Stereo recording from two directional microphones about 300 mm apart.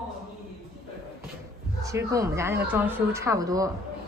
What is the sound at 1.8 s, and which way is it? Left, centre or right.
A woman's voice, centre.